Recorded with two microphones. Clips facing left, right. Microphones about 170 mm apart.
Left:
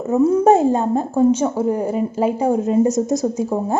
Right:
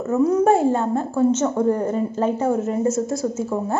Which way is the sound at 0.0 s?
15° left (ahead or behind).